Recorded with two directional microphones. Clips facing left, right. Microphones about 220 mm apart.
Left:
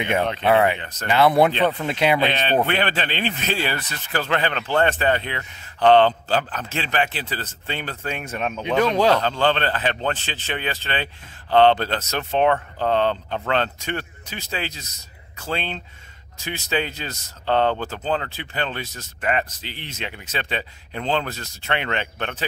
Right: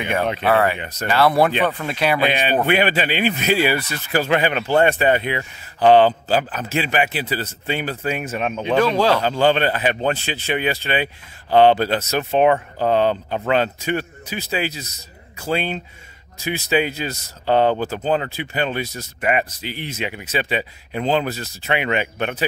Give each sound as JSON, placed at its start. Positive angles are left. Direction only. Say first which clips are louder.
{"t": 0.2, "sound": "speech", "louder": "right 2 dB", "side_deg": -10}
{"t": 0.5, "sound": "speech", "louder": "even", "side_deg": 20}
{"t": 0.7, "sound": "speech", "louder": "right 4 dB", "side_deg": -10}
{"t": 1.0, "sound": "speech", "louder": "even", "side_deg": 20}
{"t": 2.1, "sound": "speech", "louder": "right 1 dB", "side_deg": -10}